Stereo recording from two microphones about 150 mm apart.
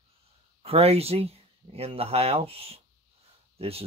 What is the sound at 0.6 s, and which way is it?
Speech, 40° right (ahead or behind).